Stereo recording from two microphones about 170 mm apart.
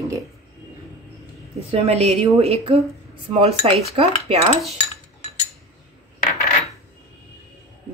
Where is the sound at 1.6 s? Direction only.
35° right (ahead or behind).